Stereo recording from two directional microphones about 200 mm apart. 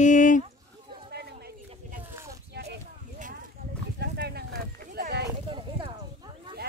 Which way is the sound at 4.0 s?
55° right (ahead or behind).